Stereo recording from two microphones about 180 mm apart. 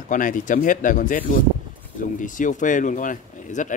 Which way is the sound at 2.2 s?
45° left (ahead or behind).